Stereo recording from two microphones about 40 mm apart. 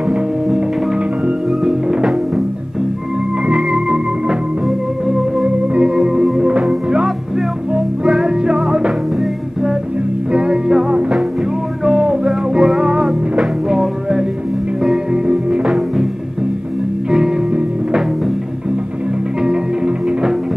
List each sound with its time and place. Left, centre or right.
0.1 s music: centre
3.4 s music: right
5.4 s organ: right
5.9 s music: centre
10.3 s music: right
15.2 s music: centre
20.1 s music: centre